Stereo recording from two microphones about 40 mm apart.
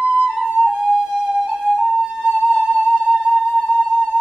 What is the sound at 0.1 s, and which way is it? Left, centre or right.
Flute, centre.